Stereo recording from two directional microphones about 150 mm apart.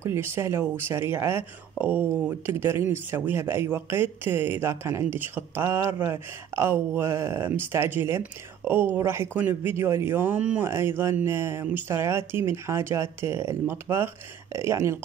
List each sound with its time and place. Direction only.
0.0 s speech: 15° right (ahead or behind)